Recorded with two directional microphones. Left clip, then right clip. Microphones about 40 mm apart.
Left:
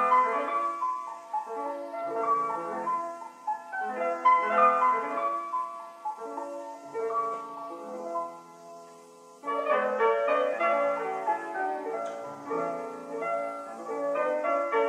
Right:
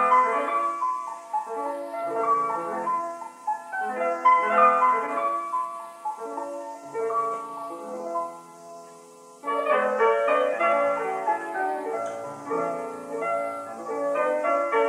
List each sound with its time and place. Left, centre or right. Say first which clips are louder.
0.0 s music: right 4 dB; right
9.5 s music: right 4 dB; right
13.9 s music: right 4 dB; right